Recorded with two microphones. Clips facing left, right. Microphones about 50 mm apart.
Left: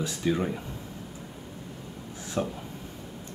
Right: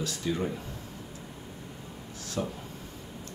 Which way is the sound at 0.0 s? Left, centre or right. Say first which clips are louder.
Left 3 dB; left.